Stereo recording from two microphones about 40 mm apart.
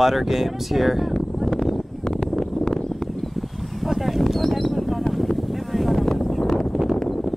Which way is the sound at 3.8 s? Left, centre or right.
Centre.